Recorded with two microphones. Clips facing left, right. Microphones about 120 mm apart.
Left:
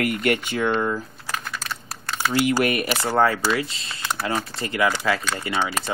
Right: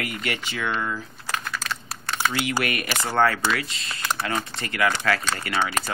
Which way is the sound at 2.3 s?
40° left (ahead or behind).